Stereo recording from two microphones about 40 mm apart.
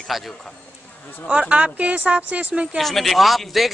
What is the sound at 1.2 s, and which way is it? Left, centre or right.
Speech, right.